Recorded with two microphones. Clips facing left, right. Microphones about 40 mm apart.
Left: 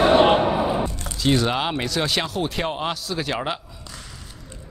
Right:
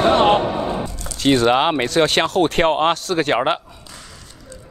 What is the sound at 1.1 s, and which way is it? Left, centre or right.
Speech, right.